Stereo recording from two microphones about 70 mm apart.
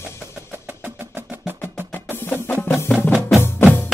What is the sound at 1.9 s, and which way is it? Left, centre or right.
Percussion, left.